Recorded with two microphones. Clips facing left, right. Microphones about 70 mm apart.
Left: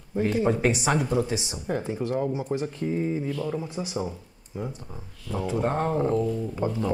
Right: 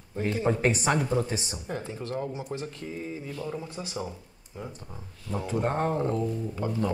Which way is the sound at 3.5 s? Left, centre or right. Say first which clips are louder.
Left 5 dB; centre.